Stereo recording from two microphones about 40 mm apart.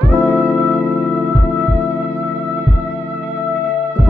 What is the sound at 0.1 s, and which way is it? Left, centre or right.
Music, left.